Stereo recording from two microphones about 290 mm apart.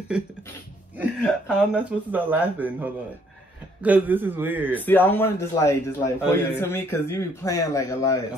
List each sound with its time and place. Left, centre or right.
0.1 s speech: centre
4.7 s a man's voice: centre